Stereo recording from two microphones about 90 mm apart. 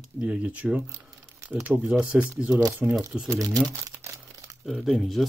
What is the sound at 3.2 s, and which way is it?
Crumpling, 40° right (ahead or behind).